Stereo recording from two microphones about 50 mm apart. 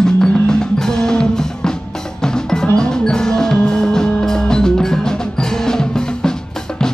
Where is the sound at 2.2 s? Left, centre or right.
Centre.